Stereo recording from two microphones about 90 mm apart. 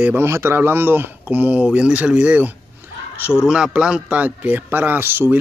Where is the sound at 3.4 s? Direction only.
10° right (ahead or behind).